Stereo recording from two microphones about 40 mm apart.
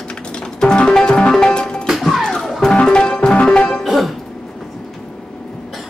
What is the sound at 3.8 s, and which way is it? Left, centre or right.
Music, centre.